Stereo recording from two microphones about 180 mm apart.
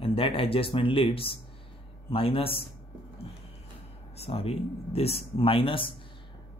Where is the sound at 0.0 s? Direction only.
30° left (ahead or behind).